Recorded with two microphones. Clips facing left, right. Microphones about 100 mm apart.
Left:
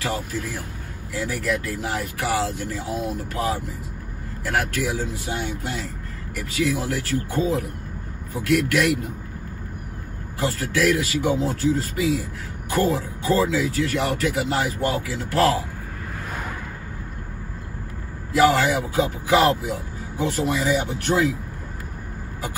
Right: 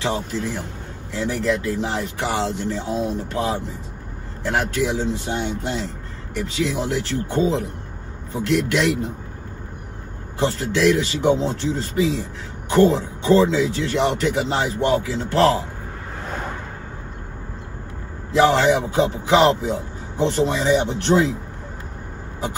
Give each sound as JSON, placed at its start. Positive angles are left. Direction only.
{"t": 0.0, "sound": "speech", "side_deg": -25}
{"t": 10.4, "sound": "speech", "side_deg": -25}
{"t": 18.4, "sound": "speech", "side_deg": -30}